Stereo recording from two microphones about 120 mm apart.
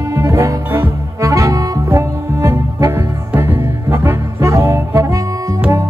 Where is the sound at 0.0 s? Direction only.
25° right (ahead or behind).